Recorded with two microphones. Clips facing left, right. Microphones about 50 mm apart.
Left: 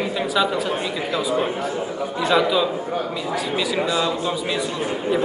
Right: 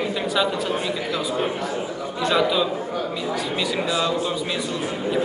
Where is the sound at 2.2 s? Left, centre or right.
Centre.